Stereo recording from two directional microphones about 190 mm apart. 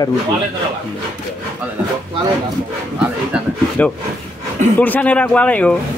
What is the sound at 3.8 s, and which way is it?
Speech, 5° left (ahead or behind).